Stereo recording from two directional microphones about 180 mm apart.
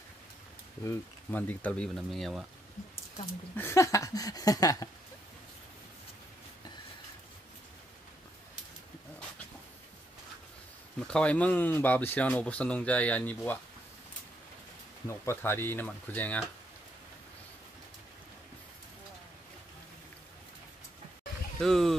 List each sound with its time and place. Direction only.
0.8 s speech: 10° left (ahead or behind)
3.5 s speech: 15° left (ahead or behind)
11.0 s speech: 5° left (ahead or behind)
15.0 s speech: 15° left (ahead or behind)
21.5 s speech: centre (ahead or behind)